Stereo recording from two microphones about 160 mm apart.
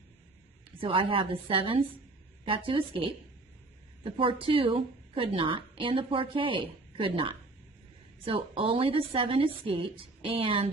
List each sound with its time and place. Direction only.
0.7 s a woman's voice: 30° right (ahead or behind)